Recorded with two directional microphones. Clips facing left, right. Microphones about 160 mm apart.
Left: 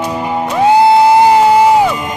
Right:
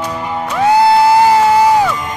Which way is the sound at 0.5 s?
20° left (ahead or behind).